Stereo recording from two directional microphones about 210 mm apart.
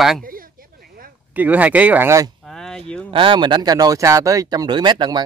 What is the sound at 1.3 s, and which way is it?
Speech, 5° right (ahead or behind).